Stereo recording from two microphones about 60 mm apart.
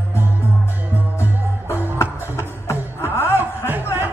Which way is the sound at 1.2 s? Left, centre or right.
Left.